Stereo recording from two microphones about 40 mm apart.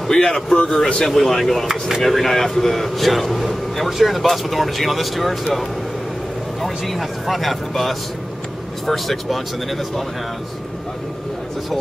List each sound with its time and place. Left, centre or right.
0.1 s a man's voice: centre